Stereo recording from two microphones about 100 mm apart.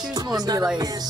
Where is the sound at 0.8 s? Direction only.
40° right (ahead or behind).